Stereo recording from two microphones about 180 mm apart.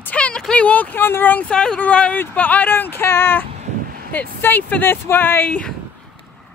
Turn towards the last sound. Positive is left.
turn(degrees=10)  # may be behind; listen again after turning